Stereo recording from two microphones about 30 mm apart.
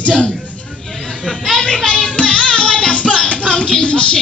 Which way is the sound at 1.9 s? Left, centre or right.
Left.